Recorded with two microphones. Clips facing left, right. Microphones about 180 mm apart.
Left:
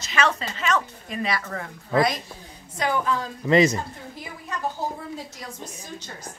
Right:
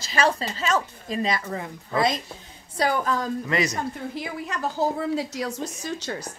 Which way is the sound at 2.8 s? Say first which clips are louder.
Right 1 dB; 40° right (ahead or behind).